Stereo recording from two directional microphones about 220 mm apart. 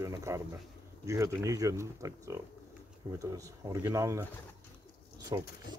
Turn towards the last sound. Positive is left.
turn(degrees=-15)  # may be behind; listen again after turning